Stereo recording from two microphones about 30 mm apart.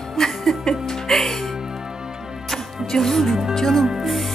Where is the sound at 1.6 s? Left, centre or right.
Right.